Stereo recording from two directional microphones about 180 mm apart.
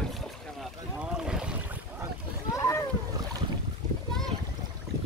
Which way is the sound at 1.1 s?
5° right (ahead or behind).